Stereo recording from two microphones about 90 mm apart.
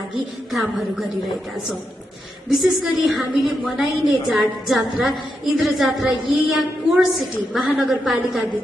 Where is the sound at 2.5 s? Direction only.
Centre (ahead or behind).